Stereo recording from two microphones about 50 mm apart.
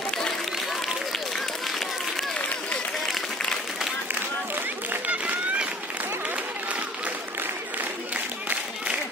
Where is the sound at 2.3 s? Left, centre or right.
Left.